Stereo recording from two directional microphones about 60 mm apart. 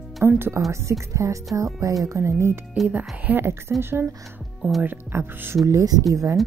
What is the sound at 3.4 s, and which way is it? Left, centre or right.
Speech, right.